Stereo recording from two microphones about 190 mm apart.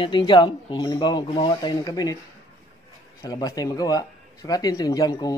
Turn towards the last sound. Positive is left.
turn(degrees=20)  # may be behind; listen again after turning